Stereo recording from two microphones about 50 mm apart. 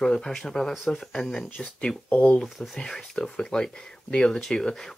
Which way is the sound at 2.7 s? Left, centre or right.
Centre.